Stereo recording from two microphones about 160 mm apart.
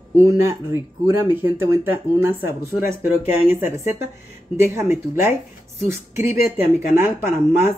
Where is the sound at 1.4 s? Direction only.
15° right (ahead or behind).